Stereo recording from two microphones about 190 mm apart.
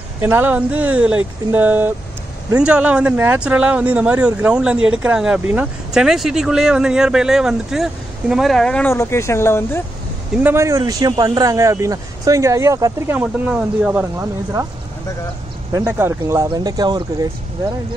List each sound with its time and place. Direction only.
0.2 s speech: 10° right (ahead or behind); by 9.8 s 10° left (ahead or behind)
10.3 s speech: 10° right (ahead or behind)
15.7 s speech: 10° right (ahead or behind)